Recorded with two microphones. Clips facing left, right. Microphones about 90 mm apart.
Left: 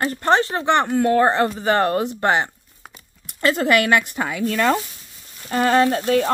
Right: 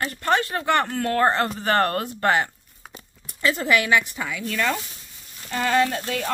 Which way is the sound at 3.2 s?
65° left (ahead or behind).